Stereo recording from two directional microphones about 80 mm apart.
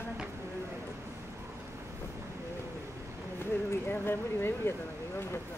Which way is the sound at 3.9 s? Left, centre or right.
Left.